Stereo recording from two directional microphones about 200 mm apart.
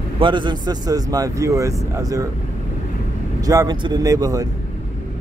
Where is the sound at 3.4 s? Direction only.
15° right (ahead or behind).